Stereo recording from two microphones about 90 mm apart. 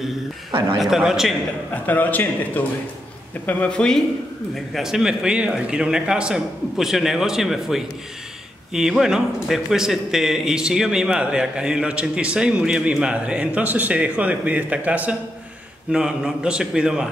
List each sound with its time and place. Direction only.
0.5 s speech: 70° right (ahead or behind)
0.7 s speech: 5° right (ahead or behind)
1.7 s a man's voice: 20° left (ahead or behind)
4.7 s a man's voice: 5° right (ahead or behind)